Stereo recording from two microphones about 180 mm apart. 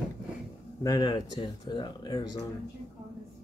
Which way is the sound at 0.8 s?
25° left (ahead or behind).